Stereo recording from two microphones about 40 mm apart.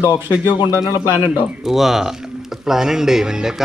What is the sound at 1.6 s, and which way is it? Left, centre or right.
Speech, centre.